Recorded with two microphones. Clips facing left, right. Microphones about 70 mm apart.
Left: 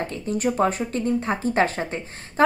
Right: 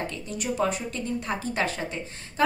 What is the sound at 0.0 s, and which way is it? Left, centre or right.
Speech, left.